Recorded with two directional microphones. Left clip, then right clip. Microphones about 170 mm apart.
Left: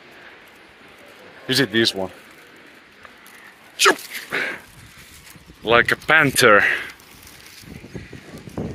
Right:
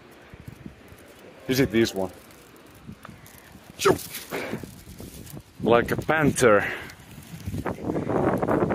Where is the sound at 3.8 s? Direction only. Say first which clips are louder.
Left 6 dB; 15° right (ahead or behind).